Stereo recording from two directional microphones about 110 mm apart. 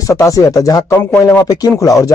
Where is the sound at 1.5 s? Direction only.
35° left (ahead or behind).